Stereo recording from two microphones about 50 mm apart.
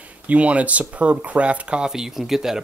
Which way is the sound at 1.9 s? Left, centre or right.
Centre.